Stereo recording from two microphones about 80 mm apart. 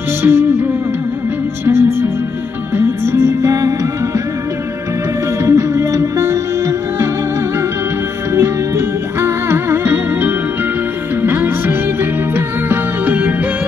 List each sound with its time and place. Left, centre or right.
0.2 s music: right
1.7 s music: right
5.4 s music: right
8.3 s music: right